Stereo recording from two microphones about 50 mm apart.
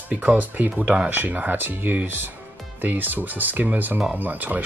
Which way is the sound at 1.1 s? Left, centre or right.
Right.